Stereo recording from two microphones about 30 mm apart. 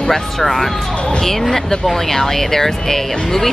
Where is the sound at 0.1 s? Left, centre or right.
Centre.